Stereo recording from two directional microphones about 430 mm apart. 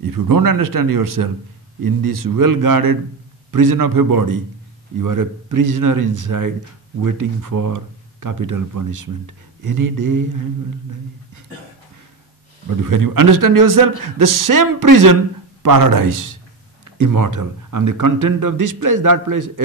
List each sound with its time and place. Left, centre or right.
0.0 s speech: right
12.8 s speech: right